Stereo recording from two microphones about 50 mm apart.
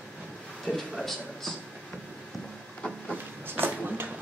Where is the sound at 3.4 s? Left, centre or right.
Right.